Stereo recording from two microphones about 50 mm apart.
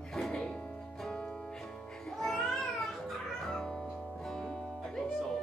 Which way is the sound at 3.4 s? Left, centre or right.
Centre.